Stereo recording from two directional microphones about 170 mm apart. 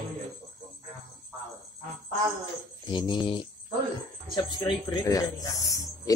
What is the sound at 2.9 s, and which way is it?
Speech, 25° left (ahead or behind).